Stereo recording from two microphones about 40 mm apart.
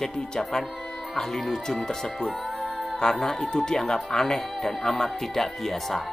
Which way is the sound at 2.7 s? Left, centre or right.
Centre.